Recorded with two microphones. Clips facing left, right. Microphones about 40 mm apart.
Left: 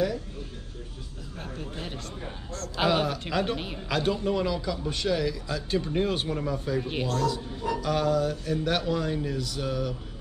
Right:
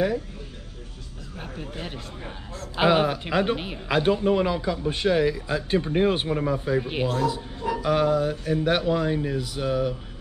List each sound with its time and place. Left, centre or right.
1.4 s a man's voice: centre